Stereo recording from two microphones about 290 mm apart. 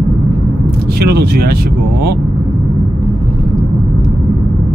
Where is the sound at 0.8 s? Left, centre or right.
Right.